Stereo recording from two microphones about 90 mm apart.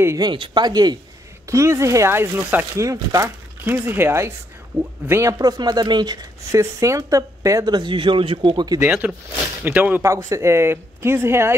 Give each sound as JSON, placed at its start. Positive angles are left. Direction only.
{"t": 0.2, "sound": "speech", "side_deg": -60}
{"t": 1.5, "sound": "speech", "side_deg": -35}
{"t": 2.7, "sound": "speech", "side_deg": -35}
{"t": 3.6, "sound": "speech", "side_deg": -20}
{"t": 5.4, "sound": "speech", "side_deg": -50}
{"t": 6.5, "sound": "speech", "side_deg": -35}
{"t": 9.0, "sound": "speech", "side_deg": -15}
{"t": 10.0, "sound": "speech", "side_deg": -35}